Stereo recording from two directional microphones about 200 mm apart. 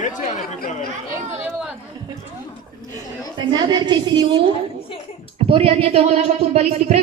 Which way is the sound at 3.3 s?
25° right (ahead or behind).